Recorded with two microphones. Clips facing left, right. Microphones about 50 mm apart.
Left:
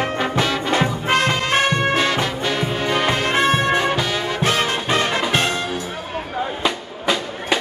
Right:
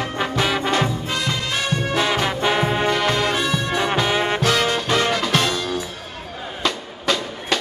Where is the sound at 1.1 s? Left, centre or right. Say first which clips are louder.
Left 6 dB; left.